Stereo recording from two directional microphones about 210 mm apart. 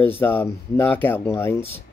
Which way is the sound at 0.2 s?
10° left (ahead or behind).